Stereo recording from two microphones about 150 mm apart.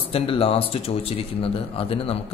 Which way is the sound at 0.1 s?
40° left (ahead or behind).